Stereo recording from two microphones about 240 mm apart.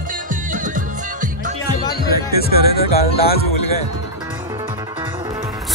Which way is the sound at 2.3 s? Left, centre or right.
Left.